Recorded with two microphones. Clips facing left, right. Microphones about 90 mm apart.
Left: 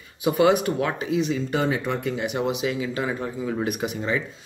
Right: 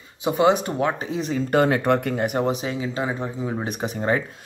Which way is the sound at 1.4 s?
55° right (ahead or behind).